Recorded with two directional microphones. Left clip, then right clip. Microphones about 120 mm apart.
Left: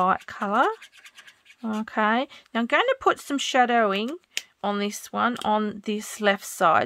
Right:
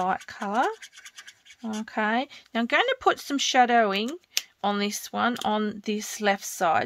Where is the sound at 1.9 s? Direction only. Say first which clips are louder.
Left 3 dB; 45° left (ahead or behind).